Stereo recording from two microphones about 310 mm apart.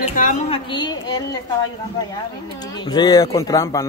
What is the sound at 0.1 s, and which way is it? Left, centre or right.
A man's voice, left.